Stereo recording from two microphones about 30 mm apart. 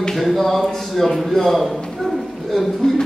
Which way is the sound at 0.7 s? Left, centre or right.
Centre.